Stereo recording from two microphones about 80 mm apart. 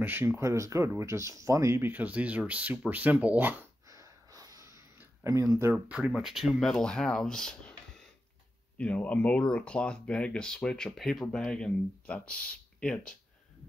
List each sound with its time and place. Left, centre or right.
0.0 s speech: right
1.9 s speech: centre
3.9 s a sound: right
5.2 s speech: right
5.9 s speech: centre